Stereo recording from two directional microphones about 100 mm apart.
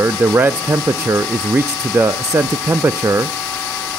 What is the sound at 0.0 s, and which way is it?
Ratchet, 20° right (ahead or behind).